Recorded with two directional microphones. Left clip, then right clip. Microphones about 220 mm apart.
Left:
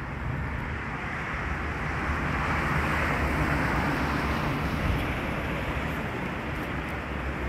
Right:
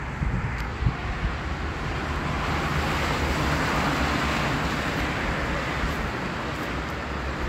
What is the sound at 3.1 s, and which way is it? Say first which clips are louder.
Vehicle: right 2 dB; 50° right (ahead or behind).